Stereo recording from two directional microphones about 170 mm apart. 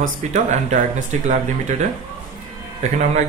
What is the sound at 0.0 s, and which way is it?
Speech, 45° right (ahead or behind).